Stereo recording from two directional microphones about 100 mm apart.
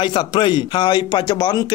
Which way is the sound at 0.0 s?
50° left (ahead or behind).